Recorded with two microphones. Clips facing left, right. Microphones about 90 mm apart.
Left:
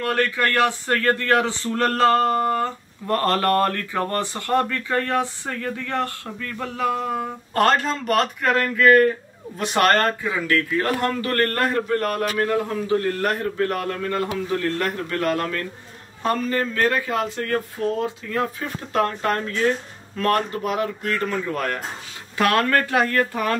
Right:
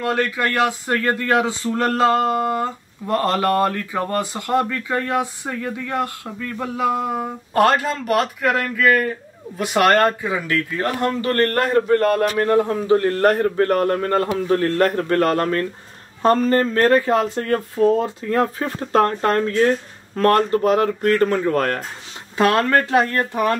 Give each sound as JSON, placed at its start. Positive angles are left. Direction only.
{"t": 0.0, "sound": "a man's voice", "side_deg": -15}
{"t": 18.3, "sound": "a man's voice", "side_deg": -40}
{"t": 22.4, "sound": "speech", "side_deg": -25}